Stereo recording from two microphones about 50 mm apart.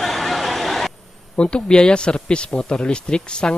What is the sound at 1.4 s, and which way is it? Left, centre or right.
Speech, left.